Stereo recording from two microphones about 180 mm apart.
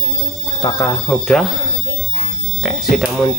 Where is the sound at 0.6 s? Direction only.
20° left (ahead or behind).